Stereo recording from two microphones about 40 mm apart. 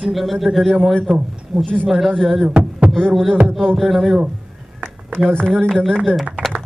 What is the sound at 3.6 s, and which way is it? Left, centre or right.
Speech, centre.